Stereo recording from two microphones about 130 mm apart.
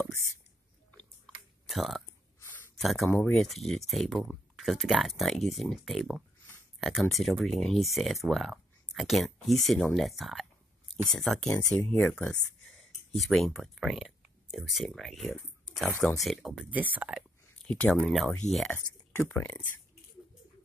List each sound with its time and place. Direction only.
0.0 s whispering: centre (ahead or behind)
0.9 s chewing: centre (ahead or behind)
2.4 s a sound: 20° left (ahead or behind)
2.7 s speech: centre (ahead or behind)
16.7 s speech: 15° right (ahead or behind)
17.6 s speech: 10° left (ahead or behind)
19.1 s speech: 15° left (ahead or behind)